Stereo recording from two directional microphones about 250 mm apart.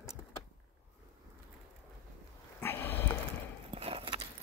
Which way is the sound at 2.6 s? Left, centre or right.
Centre.